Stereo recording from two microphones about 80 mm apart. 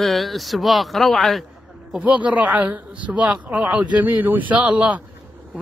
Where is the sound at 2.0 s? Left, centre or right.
Centre.